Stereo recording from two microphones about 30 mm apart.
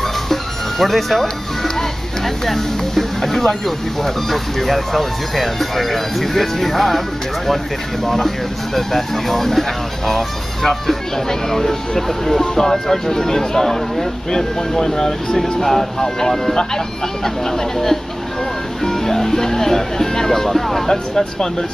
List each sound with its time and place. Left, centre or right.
0.0 s music: centre
1.2 s speech: centre
15.6 s speech: centre